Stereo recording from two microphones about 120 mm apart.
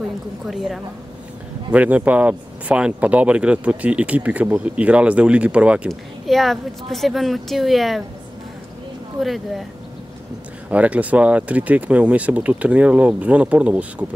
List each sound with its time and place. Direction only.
0.5 s a woman's voice: centre (ahead or behind)
1.7 s speech: 10° right (ahead or behind)
5.9 s a woman's voice: centre (ahead or behind)
9.2 s a woman's voice: centre (ahead or behind)
10.7 s speech: 10° right (ahead or behind)